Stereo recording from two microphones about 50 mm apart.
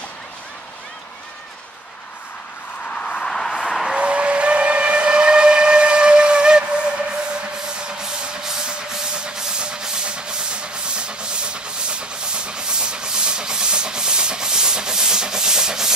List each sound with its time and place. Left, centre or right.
2.9 s vehicle: left
3.3 s a sound: centre
3.9 s steam whistle: right
7.6 s music: centre